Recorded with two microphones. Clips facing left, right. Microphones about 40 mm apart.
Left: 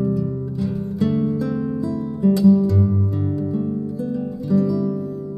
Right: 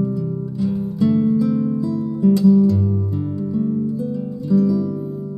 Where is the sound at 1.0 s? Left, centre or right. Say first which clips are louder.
Right 3 dB; centre.